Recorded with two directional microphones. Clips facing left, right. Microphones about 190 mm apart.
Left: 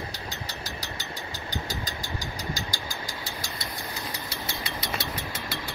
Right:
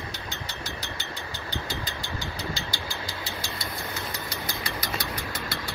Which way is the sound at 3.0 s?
45° left (ahead or behind).